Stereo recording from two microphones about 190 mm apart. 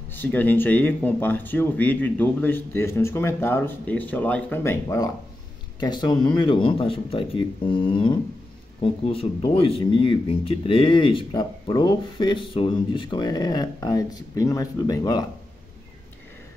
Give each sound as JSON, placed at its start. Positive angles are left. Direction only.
{"t": 0.1, "sound": "speech", "side_deg": 10}